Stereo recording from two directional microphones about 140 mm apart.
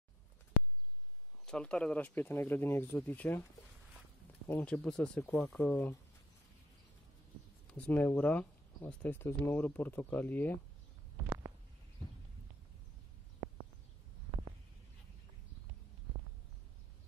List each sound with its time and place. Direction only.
1.4 s speech: 5° left (ahead or behind)
4.5 s speech: 10° left (ahead or behind)
5.7 s speech: 15° left (ahead or behind)
7.6 s speech: 10° left (ahead or behind)
11.2 s a sound: 25° right (ahead or behind)